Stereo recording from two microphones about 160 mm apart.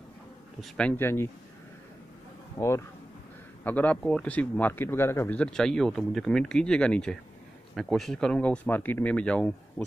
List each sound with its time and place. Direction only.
0.6 s speech: 5° left (ahead or behind)
2.6 s speech: 20° left (ahead or behind)
3.6 s speech: 10° left (ahead or behind)